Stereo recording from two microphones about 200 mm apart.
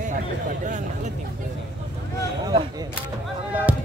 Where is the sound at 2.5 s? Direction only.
25° right (ahead or behind).